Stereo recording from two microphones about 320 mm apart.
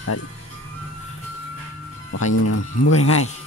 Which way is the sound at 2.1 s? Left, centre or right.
Left.